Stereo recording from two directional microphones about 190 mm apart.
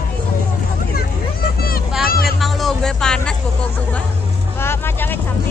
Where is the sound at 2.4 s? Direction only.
Centre (ahead or behind).